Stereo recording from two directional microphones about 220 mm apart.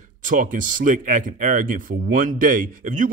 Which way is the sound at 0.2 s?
35° right (ahead or behind).